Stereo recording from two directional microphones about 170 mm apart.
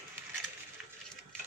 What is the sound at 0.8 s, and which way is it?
Sewing machine, 5° right (ahead or behind).